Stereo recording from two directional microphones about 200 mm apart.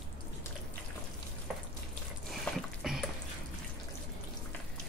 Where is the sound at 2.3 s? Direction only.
Centre (ahead or behind).